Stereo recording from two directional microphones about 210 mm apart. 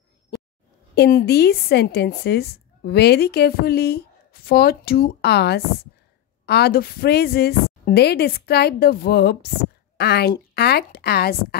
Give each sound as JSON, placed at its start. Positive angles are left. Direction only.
{"t": 0.9, "sound": "a woman's voice", "side_deg": 50}